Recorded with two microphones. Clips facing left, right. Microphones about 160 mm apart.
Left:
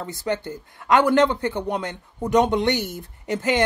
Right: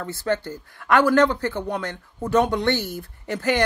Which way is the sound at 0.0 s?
20° left (ahead or behind).